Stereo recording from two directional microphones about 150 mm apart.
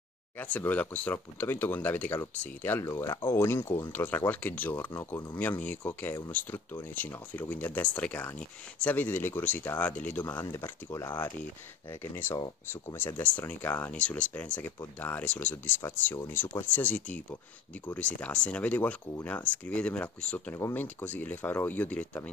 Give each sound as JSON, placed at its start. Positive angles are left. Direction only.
{"t": 0.4, "sound": "speech", "side_deg": 10}
{"t": 10.4, "sound": "speech", "side_deg": 25}
{"t": 12.0, "sound": "speech", "side_deg": 15}